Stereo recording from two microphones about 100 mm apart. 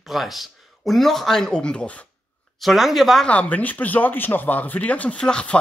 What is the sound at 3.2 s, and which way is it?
Speech, 15° left (ahead or behind).